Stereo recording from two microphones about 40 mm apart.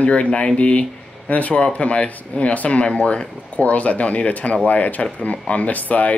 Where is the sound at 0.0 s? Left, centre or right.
Left.